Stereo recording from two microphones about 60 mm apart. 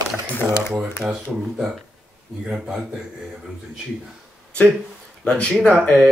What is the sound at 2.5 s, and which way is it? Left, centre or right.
Speech, centre.